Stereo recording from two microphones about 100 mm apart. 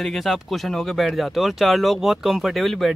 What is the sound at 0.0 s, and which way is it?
Speech, centre (ahead or behind).